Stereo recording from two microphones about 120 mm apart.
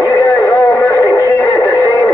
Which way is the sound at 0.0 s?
15° left (ahead or behind).